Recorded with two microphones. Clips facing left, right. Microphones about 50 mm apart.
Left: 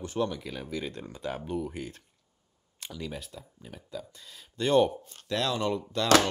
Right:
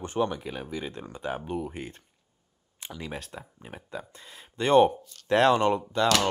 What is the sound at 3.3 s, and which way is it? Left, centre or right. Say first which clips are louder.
Speech: right 4 dB; right.